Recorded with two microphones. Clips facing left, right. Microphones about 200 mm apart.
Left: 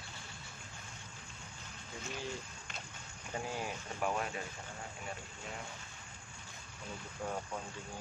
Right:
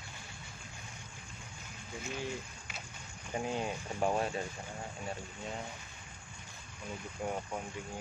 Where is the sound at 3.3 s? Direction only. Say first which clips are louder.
Right 4 dB; 20° right (ahead or behind).